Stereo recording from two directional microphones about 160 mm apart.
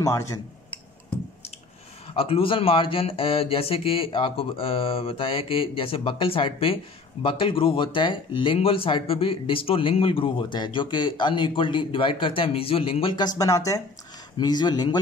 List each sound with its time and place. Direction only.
0.0 s speech: 20° left (ahead or behind)
2.1 s speech: 35° left (ahead or behind)
13.4 s speech: 20° left (ahead or behind)